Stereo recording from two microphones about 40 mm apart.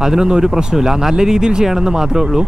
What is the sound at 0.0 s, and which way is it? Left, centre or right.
Speech, centre.